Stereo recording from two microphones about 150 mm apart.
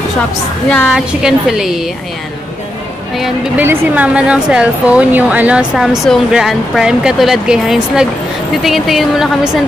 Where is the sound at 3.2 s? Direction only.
10° right (ahead or behind).